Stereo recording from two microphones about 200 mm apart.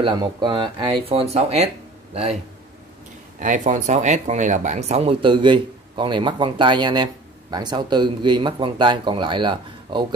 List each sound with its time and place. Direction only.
0.0 s speech: 25° right (ahead or behind)
3.3 s speech: 40° right (ahead or behind); by 10.0 s 25° right (ahead or behind)